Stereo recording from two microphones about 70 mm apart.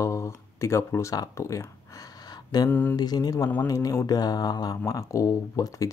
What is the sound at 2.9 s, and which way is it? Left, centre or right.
Speech, left.